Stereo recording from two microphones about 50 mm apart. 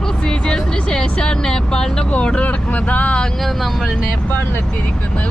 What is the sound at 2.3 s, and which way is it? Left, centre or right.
Speech, left.